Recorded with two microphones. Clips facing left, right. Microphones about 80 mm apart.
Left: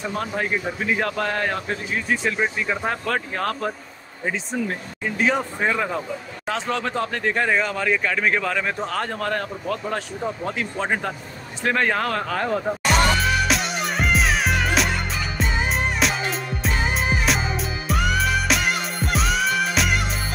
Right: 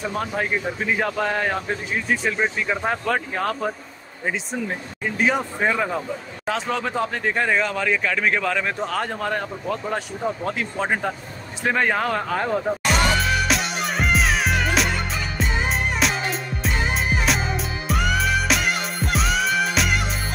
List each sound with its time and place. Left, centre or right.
0.0 s a man's voice: centre
5.2 s a man's voice: centre
11.6 s music: centre